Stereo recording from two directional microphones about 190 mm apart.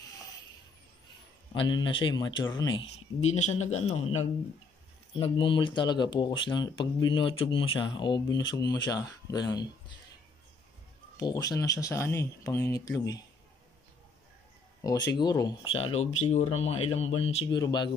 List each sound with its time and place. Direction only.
1.5 s speech: 25° left (ahead or behind)
3.2 s speech: 35° left (ahead or behind); by 9.9 s 20° left (ahead or behind)
11.1 s speech: 20° left (ahead or behind)
14.8 s speech: 20° left (ahead or behind)